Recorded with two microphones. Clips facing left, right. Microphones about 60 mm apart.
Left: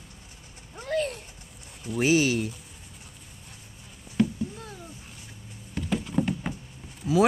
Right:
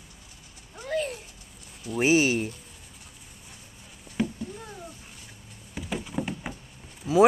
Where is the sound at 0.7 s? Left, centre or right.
Centre.